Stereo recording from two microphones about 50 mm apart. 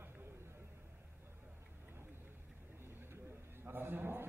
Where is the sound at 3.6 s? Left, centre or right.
Right.